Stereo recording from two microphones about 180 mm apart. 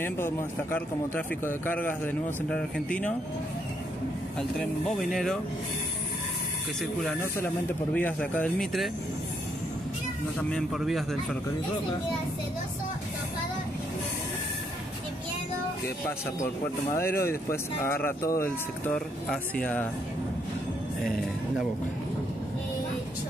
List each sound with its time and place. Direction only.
0.0 s a man's voice: 10° left (ahead or behind)
4.4 s speech: 5° left (ahead or behind)
6.8 s speech: centre (ahead or behind)
7.2 s a man's voice: 15° left (ahead or behind)
10.5 s speech: centre (ahead or behind)
16.9 s a man's voice: 15° left (ahead or behind)